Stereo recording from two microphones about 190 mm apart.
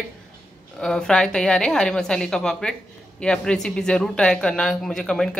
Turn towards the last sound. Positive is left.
turn(degrees=5)  # may be behind; listen again after turning